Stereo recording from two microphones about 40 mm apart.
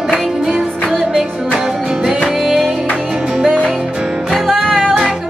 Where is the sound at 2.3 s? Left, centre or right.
Centre.